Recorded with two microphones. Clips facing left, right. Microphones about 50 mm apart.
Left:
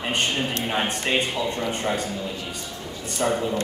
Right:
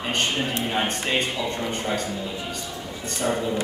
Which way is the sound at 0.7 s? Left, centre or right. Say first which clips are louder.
Left 2 dB; centre.